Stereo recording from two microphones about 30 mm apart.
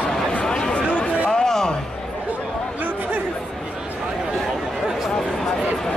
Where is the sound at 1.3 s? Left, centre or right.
Centre.